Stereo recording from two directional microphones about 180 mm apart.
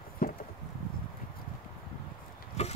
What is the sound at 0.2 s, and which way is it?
Chop, 55° left (ahead or behind).